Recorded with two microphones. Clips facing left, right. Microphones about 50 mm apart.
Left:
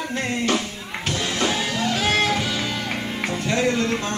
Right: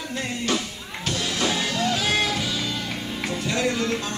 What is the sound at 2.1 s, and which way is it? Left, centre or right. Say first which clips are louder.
Music: left 3 dB; left.